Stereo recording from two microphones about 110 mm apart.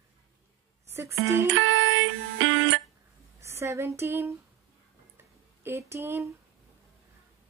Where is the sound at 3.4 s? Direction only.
25° right (ahead or behind).